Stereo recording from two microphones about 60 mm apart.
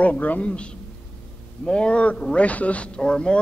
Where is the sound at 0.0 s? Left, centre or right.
Left.